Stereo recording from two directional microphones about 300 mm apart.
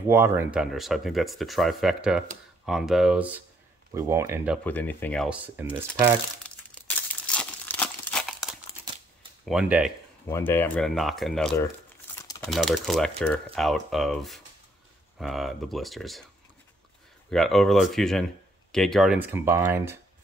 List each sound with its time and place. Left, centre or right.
0.1 s speech: centre
4.6 s speech: centre
6.7 s crumpling: centre
9.5 s speech: centre
17.3 s speech: centre